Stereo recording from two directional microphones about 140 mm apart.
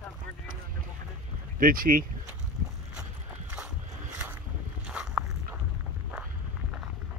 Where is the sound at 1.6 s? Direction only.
90° right.